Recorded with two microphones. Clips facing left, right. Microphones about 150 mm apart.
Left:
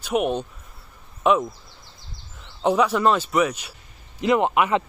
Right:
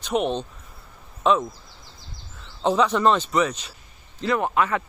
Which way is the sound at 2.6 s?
10° left (ahead or behind).